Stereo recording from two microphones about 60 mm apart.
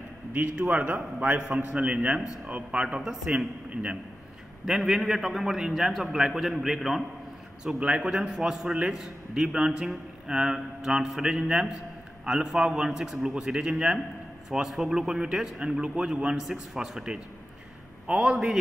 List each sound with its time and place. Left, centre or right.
0.7 s a man's voice: right
3.0 s a man's voice: centre
4.6 s a man's voice: centre
18.3 s a man's voice: centre